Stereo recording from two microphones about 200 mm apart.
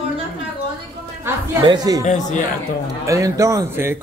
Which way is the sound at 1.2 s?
20° right (ahead or behind).